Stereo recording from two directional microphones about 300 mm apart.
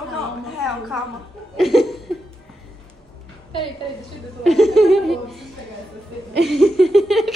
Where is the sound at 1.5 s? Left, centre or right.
Centre.